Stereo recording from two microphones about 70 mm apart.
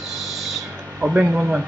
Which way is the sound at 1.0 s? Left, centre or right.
Centre.